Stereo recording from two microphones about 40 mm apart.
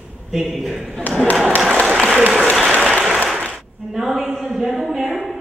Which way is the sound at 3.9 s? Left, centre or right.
Centre.